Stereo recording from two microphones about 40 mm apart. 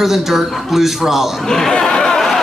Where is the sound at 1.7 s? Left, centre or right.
Left.